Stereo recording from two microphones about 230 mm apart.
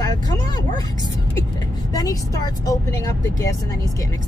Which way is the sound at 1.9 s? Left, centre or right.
Centre.